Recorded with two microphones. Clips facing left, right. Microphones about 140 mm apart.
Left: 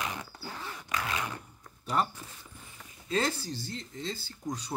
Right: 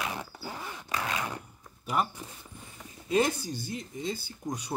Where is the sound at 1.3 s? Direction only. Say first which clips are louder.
Right 2 dB; 10° right (ahead or behind).